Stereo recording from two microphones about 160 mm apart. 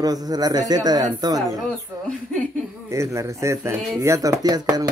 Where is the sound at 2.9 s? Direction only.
20° right (ahead or behind).